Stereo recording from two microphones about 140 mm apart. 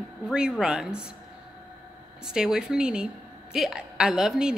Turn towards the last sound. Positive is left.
turn(degrees=-5)  # may be behind; listen again after turning